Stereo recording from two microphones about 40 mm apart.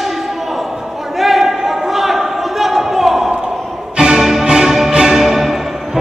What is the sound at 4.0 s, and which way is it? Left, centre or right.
Music, centre.